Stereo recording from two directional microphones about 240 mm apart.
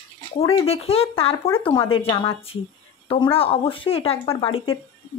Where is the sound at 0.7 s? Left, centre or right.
Left.